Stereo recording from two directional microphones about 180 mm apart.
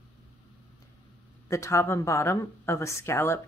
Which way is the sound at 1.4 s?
15° left (ahead or behind).